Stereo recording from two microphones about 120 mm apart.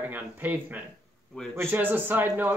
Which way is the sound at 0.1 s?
15° right (ahead or behind).